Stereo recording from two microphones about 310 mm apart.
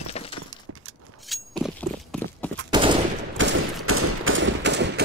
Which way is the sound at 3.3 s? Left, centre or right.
Right.